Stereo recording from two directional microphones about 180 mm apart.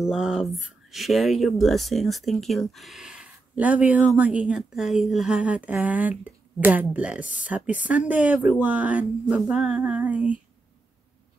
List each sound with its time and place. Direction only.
0.0 s speech: 5° right (ahead or behind)
9.3 s female singing: 5° right (ahead or behind)